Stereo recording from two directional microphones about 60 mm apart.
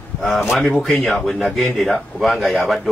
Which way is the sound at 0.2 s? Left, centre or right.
Centre.